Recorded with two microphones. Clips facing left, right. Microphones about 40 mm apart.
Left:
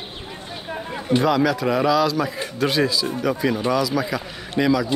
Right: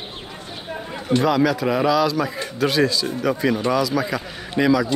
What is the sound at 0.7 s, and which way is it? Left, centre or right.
Chatter, centre.